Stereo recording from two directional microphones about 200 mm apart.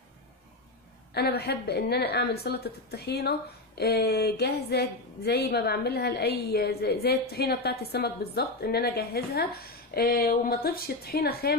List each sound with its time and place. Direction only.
1.1 s a woman's voice: 55° left (ahead or behind)